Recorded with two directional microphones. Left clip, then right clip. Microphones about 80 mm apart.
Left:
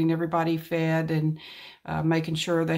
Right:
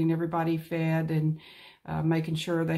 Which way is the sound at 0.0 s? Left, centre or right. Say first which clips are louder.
Left 3 dB; left.